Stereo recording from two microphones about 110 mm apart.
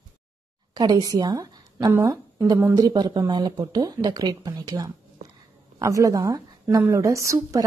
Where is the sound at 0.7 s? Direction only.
40° right (ahead or behind).